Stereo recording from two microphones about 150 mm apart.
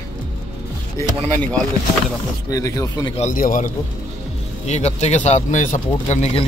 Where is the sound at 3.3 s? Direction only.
65° left (ahead or behind).